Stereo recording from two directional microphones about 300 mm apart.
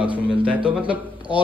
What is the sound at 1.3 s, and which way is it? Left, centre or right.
Speech, centre.